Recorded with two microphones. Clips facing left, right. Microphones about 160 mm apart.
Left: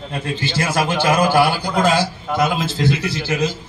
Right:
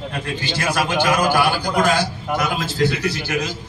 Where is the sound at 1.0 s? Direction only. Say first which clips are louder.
Left 4 dB; 25° left (ahead or behind).